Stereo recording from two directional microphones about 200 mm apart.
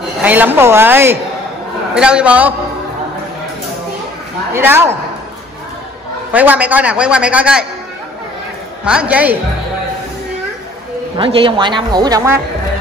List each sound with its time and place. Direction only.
0.2 s a man's voice: 10° right (ahead or behind)
4.6 s a man's voice: 10° right (ahead or behind)
6.3 s a man's voice: 10° right (ahead or behind)
8.8 s a man's voice: 5° right (ahead or behind)
11.1 s a man's voice: 25° right (ahead or behind)